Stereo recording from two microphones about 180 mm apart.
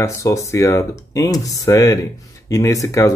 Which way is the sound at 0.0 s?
15° left (ahead or behind).